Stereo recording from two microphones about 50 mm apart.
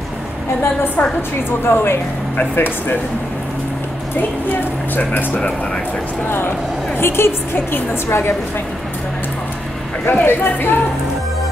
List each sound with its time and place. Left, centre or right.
1.6 s speech: left
4.5 s speech: left
7.0 s a woman's voice: left
10.0 s speech: left